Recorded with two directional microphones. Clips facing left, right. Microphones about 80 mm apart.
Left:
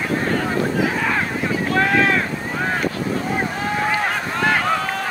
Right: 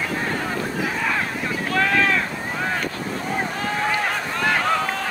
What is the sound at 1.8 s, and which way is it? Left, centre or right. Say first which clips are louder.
Boat: left 2 dB; left.